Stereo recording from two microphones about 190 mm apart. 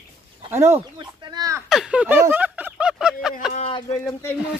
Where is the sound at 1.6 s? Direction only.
5° right (ahead or behind).